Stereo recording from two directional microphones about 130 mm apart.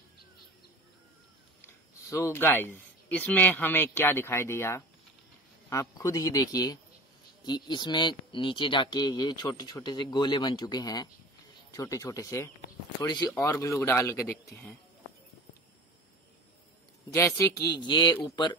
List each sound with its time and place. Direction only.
2.0 s a man's voice: 20° left (ahead or behind)
17.6 s speech: 35° left (ahead or behind)